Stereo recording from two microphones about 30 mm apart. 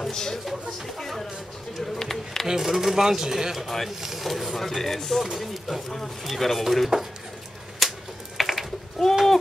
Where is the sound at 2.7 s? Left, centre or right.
Centre.